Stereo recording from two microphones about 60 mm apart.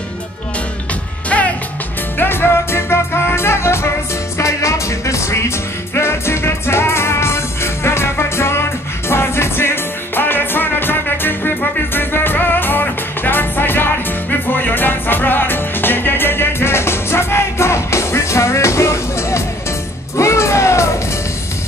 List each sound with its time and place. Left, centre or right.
2.1 s music: left
4.4 s music: left